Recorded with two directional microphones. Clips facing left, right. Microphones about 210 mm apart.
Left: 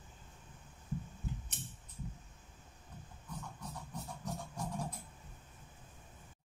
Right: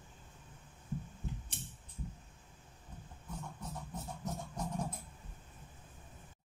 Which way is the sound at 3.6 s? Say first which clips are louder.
Right 1 dB; 20° right (ahead or behind).